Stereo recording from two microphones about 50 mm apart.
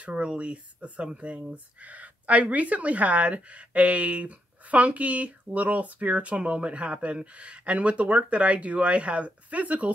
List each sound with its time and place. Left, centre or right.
0.0 s speech: right